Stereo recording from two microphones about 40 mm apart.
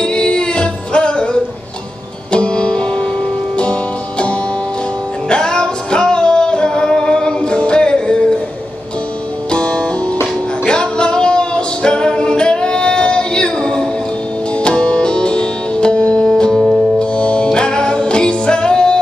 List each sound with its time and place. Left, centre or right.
0.0 s music: left
2.3 s music: left
5.3 s music: left
9.5 s music: left